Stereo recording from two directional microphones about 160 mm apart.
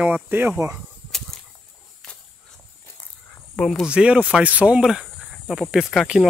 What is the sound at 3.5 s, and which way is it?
Speech, 5° left (ahead or behind).